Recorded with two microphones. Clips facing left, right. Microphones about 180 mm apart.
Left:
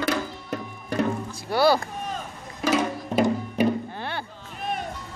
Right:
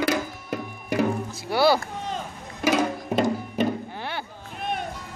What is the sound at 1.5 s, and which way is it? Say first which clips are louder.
Speech: even; 10° right (ahead or behind).